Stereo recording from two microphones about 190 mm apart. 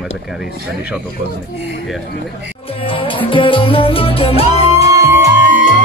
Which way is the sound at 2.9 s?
25° left (ahead or behind).